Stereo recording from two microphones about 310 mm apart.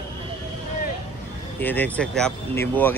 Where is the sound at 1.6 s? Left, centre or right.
Centre.